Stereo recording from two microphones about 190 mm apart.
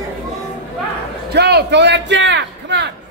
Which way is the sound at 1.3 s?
60° right (ahead or behind).